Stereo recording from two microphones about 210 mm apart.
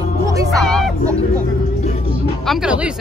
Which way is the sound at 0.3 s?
15° right (ahead or behind).